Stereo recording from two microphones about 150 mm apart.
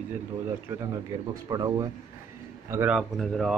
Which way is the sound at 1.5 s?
25° right (ahead or behind).